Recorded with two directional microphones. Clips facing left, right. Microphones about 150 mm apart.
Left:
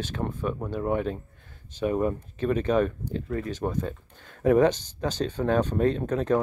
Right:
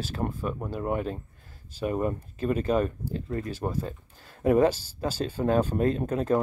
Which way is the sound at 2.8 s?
35° right (ahead or behind).